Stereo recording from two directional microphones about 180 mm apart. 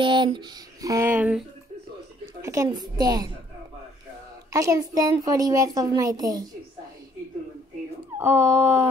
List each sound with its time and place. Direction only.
0.0 s a sound: 25° right (ahead or behind)
2.4 s a woman's voice: 20° right (ahead or behind)
4.5 s a woman's voice: 20° right (ahead or behind)
8.2 s speech: 15° right (ahead or behind)